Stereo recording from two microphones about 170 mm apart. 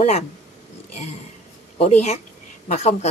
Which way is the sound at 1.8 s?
40° left (ahead or behind).